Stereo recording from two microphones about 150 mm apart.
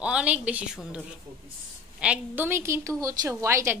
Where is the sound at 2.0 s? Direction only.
10° right (ahead or behind).